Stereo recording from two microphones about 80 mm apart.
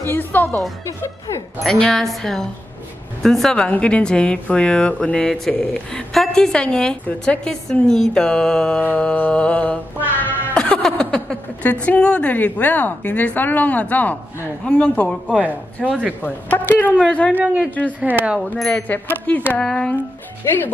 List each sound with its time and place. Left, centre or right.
0.0 s a woman's voice: left
1.6 s a woman's voice: centre
8.8 s speech: centre
15.2 s speech: centre
16.2 s a woman's voice: left
18.0 s speech: centre
18.4 s a woman's voice: centre
19.2 s a woman's voice: left
19.6 s speech: centre